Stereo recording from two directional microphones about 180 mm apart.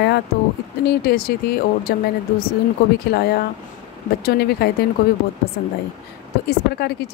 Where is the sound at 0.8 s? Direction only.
55° left (ahead or behind).